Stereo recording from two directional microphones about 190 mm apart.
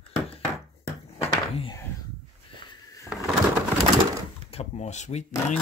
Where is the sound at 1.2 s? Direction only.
30° left (ahead or behind).